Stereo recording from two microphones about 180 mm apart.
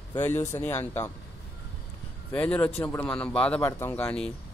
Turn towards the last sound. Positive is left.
turn(degrees=5)  # may be behind; listen again after turning